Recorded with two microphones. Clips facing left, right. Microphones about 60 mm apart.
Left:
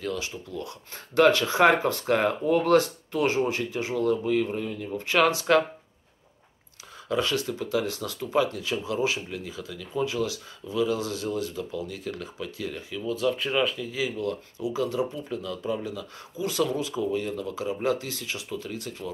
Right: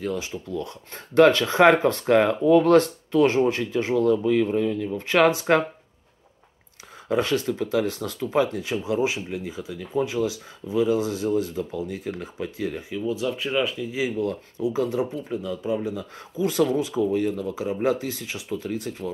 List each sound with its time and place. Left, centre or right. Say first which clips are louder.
0.0 s speech: right 3 dB; right
0.7 s speech: right 2 dB; right
7.1 s speech: right 4 dB; right
13.1 s speech: left 1 dB; centre
13.9 s speech: right 3 dB; right
15.2 s speech: right 3 dB; centre
16.3 s speech: right 5 dB; right